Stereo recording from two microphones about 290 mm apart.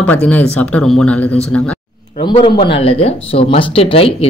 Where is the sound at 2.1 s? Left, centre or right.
Centre.